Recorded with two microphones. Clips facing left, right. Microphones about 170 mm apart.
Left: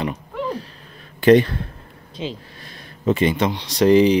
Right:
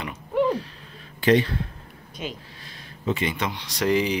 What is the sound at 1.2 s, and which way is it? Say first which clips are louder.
Speech: left 7 dB; 50° left (ahead or behind).